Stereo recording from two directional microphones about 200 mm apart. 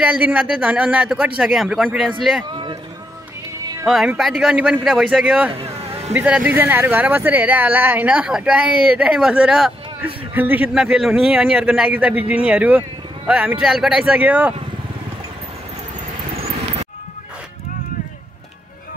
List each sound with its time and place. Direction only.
0.0 s speech: 5° right (ahead or behind)
2.4 s a sound: 20° right (ahead or behind)
3.8 s speech: 5° right (ahead or behind)